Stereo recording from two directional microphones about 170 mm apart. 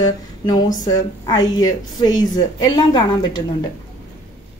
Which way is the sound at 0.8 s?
20° left (ahead or behind).